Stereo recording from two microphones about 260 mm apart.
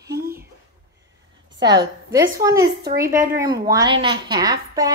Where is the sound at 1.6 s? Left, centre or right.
Centre.